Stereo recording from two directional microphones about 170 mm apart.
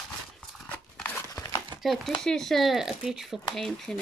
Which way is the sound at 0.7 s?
10° left (ahead or behind).